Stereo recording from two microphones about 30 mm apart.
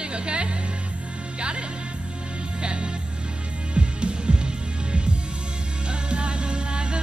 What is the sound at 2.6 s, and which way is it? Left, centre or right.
Music, right.